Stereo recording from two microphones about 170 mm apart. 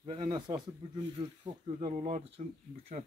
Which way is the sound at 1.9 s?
40° right (ahead or behind).